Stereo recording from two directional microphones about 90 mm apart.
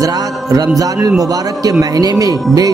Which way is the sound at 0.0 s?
40° right (ahead or behind).